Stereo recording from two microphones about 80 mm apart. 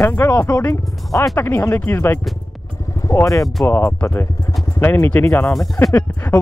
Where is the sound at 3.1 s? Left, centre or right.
Left.